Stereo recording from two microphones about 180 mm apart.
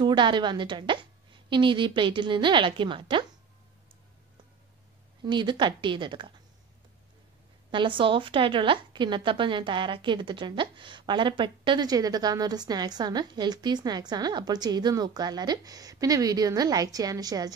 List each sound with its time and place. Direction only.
0.0 s a woman's voice: 25° right (ahead or behind)
5.2 s a woman's voice: 25° right (ahead or behind)
7.7 s a woman's voice: 25° right (ahead or behind)